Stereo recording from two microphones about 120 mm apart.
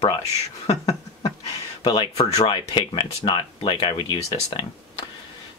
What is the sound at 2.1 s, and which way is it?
Speech, 60° left (ahead or behind).